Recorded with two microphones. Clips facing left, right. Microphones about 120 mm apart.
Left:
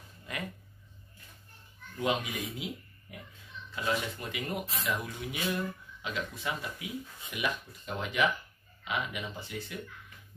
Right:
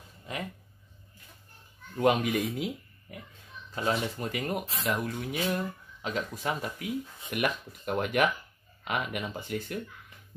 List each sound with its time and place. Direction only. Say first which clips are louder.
2.0 s speech: right 7 dB; 55° right (ahead or behind)
3.7 s speech: right 3 dB; 40° right (ahead or behind)